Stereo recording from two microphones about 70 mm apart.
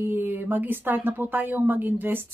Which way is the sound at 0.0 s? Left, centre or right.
Right.